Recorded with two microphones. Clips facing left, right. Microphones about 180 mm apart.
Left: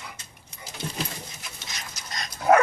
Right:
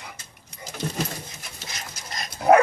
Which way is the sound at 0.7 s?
45° right (ahead or behind).